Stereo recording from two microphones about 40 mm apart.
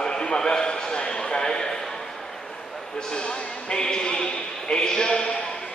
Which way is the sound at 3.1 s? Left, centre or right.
Left.